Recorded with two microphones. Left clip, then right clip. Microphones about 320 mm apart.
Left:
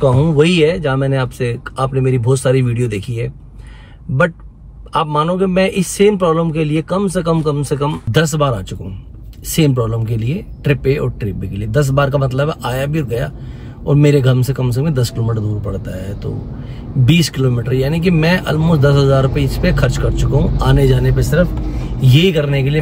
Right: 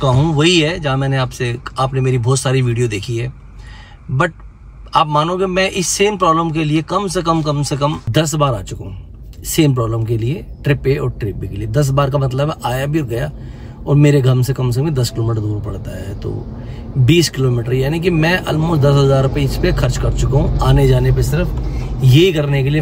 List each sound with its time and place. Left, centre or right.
0.0 s speech: centre
4.9 s speech: centre